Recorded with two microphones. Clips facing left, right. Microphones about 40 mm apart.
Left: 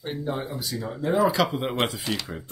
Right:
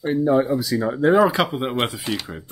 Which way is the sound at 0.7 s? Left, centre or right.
Right.